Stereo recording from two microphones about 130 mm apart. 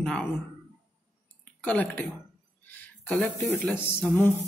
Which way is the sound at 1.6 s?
10° left (ahead or behind).